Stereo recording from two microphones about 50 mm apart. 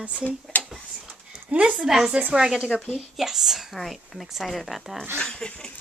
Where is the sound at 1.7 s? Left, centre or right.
Centre.